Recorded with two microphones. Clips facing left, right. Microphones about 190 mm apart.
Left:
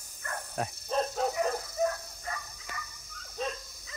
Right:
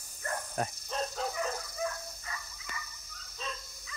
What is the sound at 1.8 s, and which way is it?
Dog, 50° left (ahead or behind).